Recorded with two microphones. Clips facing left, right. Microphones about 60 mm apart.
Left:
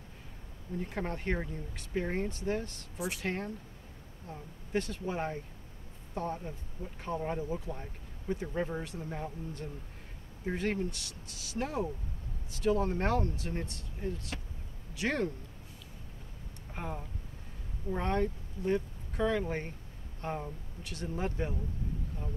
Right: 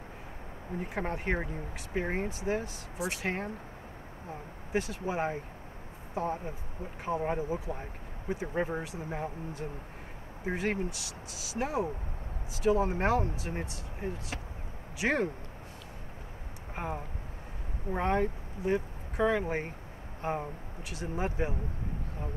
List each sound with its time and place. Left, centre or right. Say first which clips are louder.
0.7 s speech: right 2 dB; centre
16.7 s speech: right 4 dB; right